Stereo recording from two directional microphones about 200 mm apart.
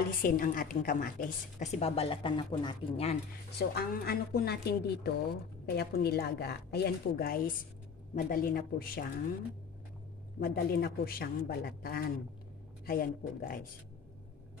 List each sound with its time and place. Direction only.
0.2 s a woman's voice: 45° left (ahead or behind)
1.6 s speech: 35° left (ahead or behind)
3.5 s a woman's voice: 50° left (ahead or behind)
10.4 s a woman's voice: 50° left (ahead or behind)